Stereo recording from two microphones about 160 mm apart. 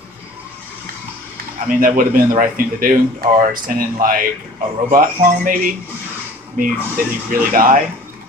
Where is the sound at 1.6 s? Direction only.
60° right (ahead or behind).